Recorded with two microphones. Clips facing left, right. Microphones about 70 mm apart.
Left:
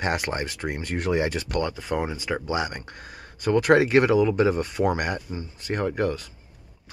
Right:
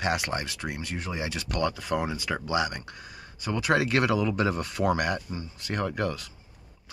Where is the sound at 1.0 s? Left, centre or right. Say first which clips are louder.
Left 12 dB; left.